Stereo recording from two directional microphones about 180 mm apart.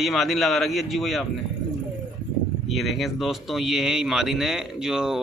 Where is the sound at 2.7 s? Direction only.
Centre (ahead or behind).